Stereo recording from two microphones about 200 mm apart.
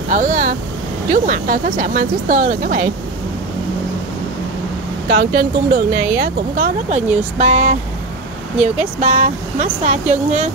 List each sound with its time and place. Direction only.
0.1 s speech: 40° right (ahead or behind)
5.2 s speech: 45° right (ahead or behind)